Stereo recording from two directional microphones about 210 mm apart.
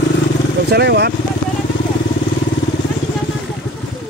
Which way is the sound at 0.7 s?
50° right (ahead or behind).